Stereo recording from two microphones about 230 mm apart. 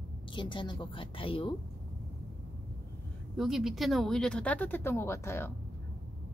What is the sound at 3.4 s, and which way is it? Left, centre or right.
Speech, centre.